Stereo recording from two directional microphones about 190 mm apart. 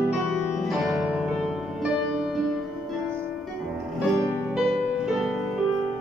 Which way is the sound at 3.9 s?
Centre (ahead or behind).